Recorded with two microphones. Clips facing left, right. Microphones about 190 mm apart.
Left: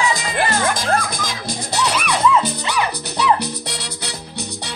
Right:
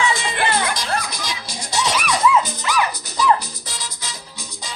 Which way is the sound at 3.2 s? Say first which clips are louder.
Even; 65° left (ahead or behind).